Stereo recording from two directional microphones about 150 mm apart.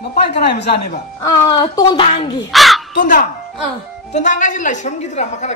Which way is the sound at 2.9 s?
65° left (ahead or behind).